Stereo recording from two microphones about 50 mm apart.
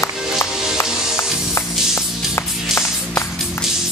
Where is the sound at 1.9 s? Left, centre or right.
Left.